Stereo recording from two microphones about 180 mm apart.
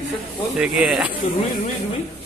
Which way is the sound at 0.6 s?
5° right (ahead or behind).